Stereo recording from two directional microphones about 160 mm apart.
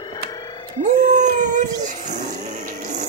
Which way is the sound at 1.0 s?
50° right (ahead or behind).